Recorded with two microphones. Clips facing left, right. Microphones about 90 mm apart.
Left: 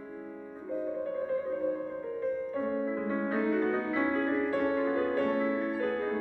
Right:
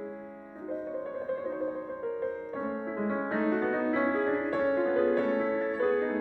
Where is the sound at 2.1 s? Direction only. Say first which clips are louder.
Left 4 dB; 40° right (ahead or behind).